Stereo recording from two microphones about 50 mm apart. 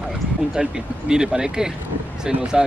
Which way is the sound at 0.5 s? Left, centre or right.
Centre.